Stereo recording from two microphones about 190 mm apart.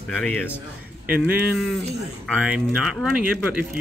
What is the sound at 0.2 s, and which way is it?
Speech, 5° left (ahead or behind).